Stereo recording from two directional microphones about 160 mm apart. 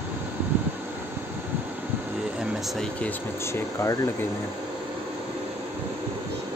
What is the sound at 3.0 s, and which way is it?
Speech, 15° left (ahead or behind).